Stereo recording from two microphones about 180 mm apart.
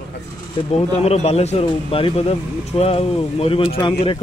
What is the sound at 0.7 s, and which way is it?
Speech, 35° left (ahead or behind).